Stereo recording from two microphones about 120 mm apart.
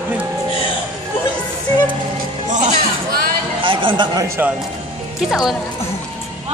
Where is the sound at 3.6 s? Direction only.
45° right (ahead or behind).